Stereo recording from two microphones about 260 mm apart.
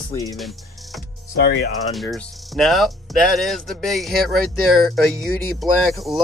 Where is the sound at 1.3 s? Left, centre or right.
Left.